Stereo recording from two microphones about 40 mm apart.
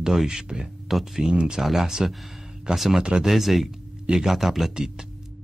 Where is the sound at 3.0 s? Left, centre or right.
Right.